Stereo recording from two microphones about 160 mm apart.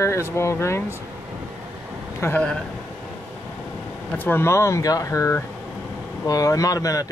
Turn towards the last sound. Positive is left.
turn(degrees=20)  # may be behind; listen again after turning